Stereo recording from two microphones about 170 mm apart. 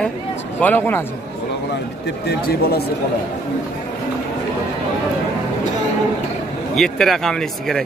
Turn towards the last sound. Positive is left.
turn(degrees=5)  # may be behind; listen again after turning